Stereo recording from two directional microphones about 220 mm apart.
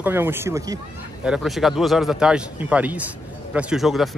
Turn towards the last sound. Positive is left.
turn(degrees=0)  # may be behind; listen again after turning